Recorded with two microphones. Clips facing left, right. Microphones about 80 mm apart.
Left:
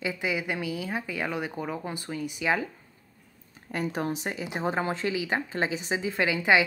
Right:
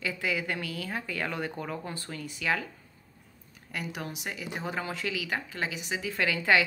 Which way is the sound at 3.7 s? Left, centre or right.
Left.